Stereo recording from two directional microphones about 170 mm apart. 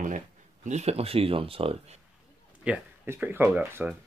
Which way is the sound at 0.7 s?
40° right (ahead or behind).